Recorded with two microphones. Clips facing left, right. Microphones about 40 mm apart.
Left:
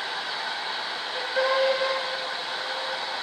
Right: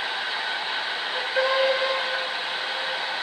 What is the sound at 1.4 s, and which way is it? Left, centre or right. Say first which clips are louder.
Steam whistle: right 1 dB; right.